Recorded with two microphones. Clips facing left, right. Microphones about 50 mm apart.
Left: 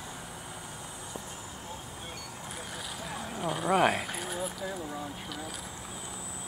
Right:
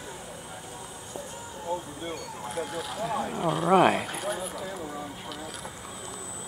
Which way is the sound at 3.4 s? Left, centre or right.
Centre.